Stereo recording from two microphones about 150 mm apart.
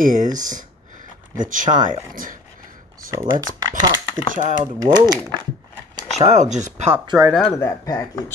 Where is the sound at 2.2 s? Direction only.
65° right (ahead or behind).